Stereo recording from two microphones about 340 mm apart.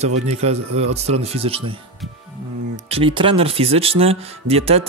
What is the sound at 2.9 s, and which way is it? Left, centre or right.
Speech, centre.